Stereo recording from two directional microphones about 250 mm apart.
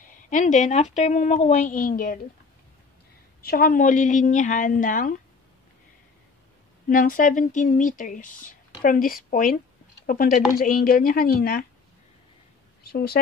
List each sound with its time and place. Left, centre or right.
0.3 s a woman's voice: left
3.4 s speech: left
6.9 s speech: left
12.8 s speech: left